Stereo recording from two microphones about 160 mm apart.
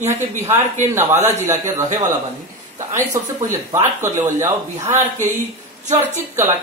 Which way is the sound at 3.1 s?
20° right (ahead or behind).